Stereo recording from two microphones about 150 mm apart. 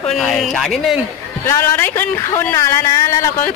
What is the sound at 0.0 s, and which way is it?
Speech, centre (ahead or behind).